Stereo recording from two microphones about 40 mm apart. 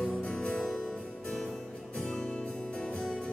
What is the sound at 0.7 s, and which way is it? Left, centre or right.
Music, centre.